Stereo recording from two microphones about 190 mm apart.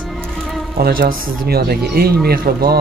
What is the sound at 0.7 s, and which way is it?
A man's voice, 55° right (ahead or behind).